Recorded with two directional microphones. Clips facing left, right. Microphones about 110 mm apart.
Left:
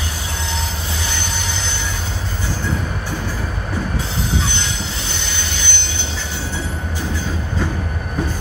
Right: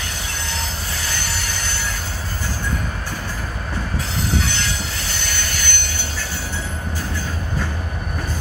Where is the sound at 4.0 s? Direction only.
25° left (ahead or behind).